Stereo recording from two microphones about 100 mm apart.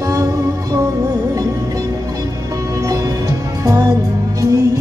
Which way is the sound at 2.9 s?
35° right (ahead or behind).